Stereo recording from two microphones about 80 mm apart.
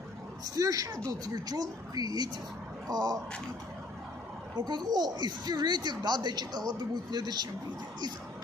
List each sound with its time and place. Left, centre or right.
0.6 s speech: right
4.6 s a child's voice: right